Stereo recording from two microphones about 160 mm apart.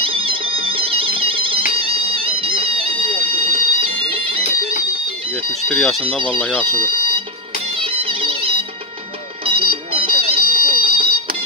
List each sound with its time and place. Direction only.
0.0 s a sound: 35° right (ahead or behind)
1.7 s music: 35° right (ahead or behind)
5.7 s speech: centre (ahead or behind)
5.9 s speech: 35° right (ahead or behind)
6.4 s speech: 5° left (ahead or behind)
7.8 s music: 35° right (ahead or behind)